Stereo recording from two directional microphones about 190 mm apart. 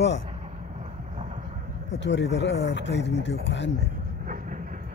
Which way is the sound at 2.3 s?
65° left (ahead or behind).